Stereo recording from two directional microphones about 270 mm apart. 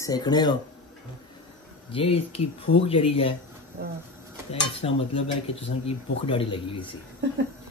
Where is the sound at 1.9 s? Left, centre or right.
Left.